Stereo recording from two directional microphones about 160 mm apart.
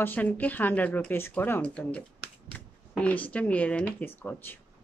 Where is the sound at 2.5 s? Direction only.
10° left (ahead or behind).